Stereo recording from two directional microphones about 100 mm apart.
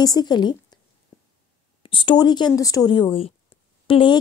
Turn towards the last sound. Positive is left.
turn(degrees=60)  # may be behind; listen again after turning